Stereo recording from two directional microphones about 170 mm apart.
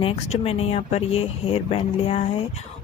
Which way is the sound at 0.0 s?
35° left (ahead or behind).